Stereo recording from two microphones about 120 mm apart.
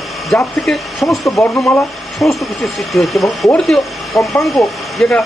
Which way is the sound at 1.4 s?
15° left (ahead or behind).